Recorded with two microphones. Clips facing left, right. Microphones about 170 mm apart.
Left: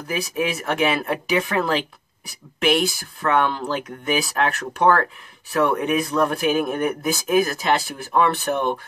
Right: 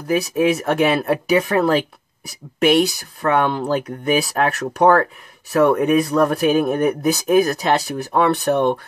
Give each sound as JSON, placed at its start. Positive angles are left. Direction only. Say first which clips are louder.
{"t": 0.1, "sound": "speech", "louder": "right 7 dB", "side_deg": -40}
{"t": 3.2, "sound": "speech", "louder": "right 3 dB", "side_deg": -40}